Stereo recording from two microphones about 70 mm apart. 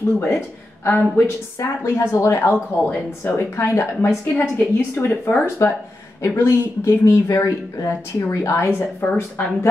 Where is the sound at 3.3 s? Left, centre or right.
Left.